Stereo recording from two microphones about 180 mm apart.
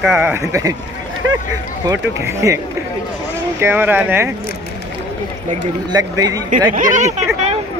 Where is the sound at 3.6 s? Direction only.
10° right (ahead or behind).